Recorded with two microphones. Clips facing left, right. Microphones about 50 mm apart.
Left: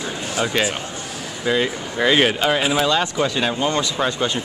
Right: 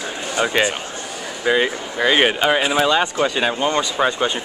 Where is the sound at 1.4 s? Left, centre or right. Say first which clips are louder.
Right 2 dB; centre.